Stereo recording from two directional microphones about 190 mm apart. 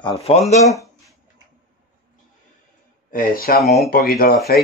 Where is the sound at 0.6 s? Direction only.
15° left (ahead or behind).